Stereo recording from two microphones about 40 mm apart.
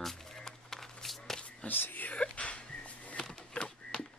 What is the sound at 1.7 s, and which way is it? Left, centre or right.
Speech, left.